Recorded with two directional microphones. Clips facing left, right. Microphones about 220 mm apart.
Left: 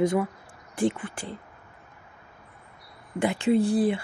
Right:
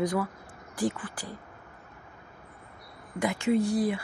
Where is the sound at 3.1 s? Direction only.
30° left (ahead or behind).